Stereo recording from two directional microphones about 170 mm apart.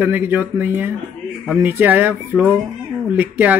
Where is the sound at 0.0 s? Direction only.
10° right (ahead or behind).